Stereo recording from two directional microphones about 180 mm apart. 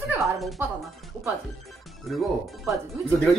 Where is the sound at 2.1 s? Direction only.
Centre (ahead or behind).